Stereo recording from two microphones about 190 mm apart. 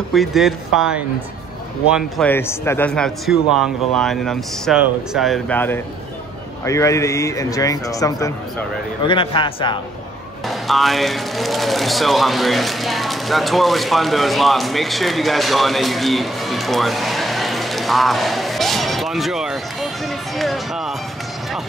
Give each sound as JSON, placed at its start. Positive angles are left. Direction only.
{"t": 0.1, "sound": "a man's voice", "side_deg": 0}
{"t": 2.2, "sound": "a man's voice", "side_deg": 10}
{"t": 10.5, "sound": "speech", "side_deg": 0}